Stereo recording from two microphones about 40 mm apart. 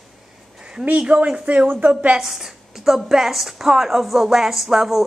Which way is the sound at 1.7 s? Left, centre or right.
Right.